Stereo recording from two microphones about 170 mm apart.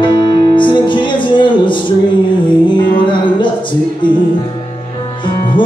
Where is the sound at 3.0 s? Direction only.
30° left (ahead or behind).